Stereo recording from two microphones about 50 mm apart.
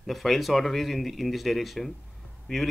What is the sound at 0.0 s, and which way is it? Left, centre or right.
Speech, centre.